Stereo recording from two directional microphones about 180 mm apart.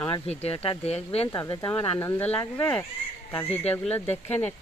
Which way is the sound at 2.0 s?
10° left (ahead or behind).